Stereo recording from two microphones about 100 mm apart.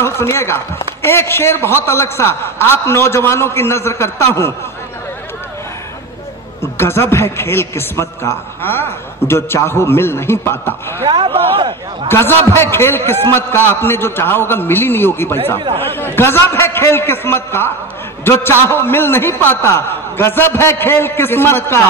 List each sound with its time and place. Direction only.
0.0 s a man's voice: 25° left (ahead or behind)
6.6 s a man's voice: 25° left (ahead or behind)
11.1 s a man's voice: 55° right (ahead or behind)
12.1 s a man's voice: 25° left (ahead or behind)